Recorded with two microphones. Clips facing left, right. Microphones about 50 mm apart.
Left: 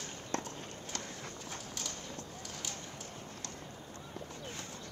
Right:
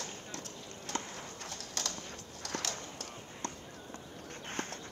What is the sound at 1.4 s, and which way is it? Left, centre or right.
Bird, right.